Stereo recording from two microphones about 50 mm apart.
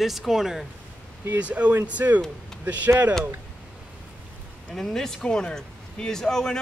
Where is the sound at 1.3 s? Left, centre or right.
Right.